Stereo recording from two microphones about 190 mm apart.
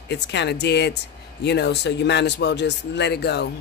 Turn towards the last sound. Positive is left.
turn(degrees=60)  # may be behind; listen again after turning